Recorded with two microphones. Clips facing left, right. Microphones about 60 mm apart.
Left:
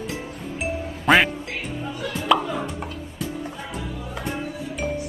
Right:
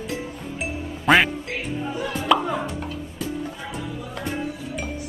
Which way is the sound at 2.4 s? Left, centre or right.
Centre.